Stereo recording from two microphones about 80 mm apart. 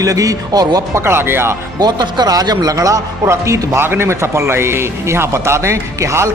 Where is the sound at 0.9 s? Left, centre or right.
Right.